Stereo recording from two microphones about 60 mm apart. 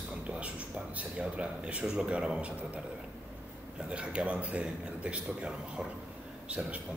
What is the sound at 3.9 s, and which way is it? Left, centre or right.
Speech, centre.